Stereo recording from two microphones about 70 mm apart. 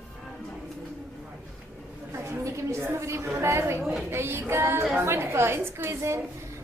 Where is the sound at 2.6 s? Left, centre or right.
Right.